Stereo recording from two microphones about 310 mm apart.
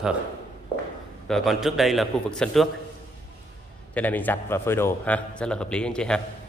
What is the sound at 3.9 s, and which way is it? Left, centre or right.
A man's voice, centre.